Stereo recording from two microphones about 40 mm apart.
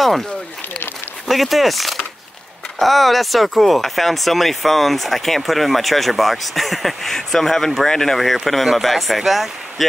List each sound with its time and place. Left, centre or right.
1.2 s speech: centre